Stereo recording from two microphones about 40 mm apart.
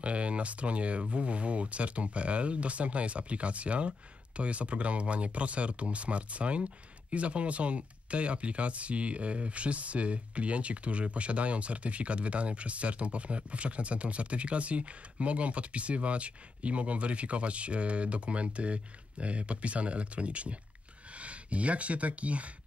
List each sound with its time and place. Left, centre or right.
0.0 s speech: right